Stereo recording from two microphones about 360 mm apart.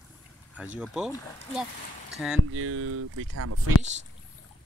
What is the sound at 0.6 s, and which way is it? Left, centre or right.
Speech, centre.